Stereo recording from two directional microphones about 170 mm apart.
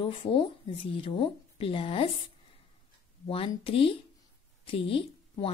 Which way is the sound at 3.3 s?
35° left (ahead or behind).